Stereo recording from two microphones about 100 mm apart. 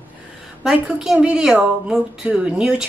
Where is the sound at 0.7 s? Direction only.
10° right (ahead or behind).